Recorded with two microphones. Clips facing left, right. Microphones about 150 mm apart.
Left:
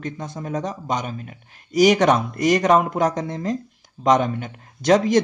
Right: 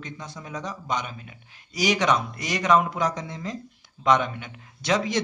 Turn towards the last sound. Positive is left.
turn(degrees=45)  # may be behind; listen again after turning